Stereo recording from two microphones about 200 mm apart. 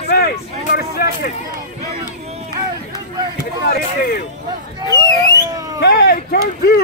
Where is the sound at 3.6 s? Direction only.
50° left (ahead or behind).